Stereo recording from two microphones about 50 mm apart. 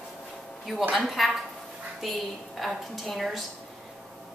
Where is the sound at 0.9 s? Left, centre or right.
Centre.